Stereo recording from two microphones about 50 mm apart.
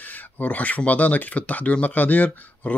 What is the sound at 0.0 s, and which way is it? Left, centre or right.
Speech, left.